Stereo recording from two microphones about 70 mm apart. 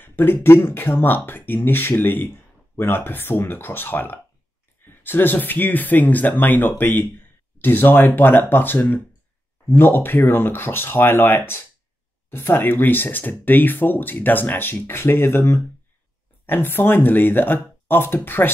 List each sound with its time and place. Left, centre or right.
0.0 s speech: left